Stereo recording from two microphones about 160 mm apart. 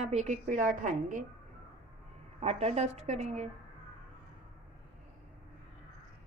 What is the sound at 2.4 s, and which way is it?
A woman's voice, 40° right (ahead or behind).